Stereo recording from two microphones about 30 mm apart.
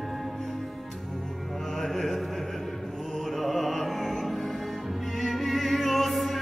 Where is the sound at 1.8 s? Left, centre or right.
Centre.